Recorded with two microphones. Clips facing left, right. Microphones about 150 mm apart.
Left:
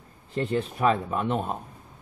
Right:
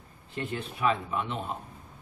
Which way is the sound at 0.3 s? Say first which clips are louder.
Left 8 dB; 35° left (ahead or behind).